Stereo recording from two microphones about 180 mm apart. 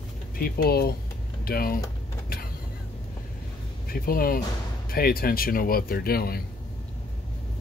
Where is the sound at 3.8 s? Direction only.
55° left (ahead or behind).